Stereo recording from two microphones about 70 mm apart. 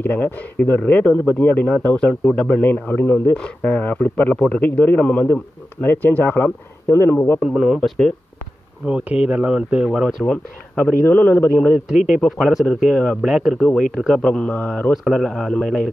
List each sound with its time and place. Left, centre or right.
0.0 s a man's voice: left; by 2.5 s centre
2.5 s a man's voice: left
3.3 s a man's voice: centre
5.3 s a man's voice: left
7.4 s speech: centre
10.2 s a man's voice: left
12.4 s speech: centre
12.6 s a man's voice: centre
13.2 s a man's voice: centre
14.5 s a man's voice: left
14.9 s a man's voice: centre